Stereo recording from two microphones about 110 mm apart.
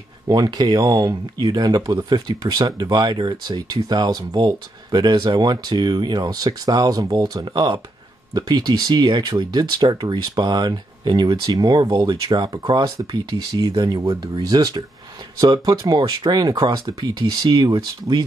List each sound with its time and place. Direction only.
0.3 s speech: 40° right (ahead or behind)
16.0 s speech: 40° right (ahead or behind)